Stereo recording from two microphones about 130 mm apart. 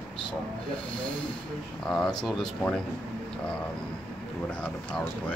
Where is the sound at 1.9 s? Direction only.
5° left (ahead or behind).